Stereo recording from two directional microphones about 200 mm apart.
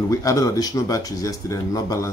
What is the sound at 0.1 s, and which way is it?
Speech, 15° left (ahead or behind).